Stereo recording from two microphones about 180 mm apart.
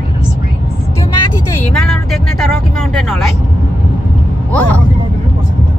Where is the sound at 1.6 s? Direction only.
Centre (ahead or behind).